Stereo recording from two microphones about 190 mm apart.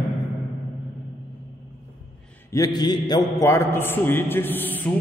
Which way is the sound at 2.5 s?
20° left (ahead or behind).